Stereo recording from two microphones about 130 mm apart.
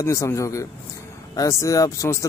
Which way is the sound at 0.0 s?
25° left (ahead or behind).